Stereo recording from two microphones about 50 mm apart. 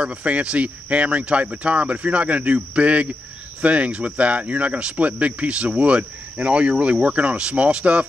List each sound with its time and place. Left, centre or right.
0.0 s speech: right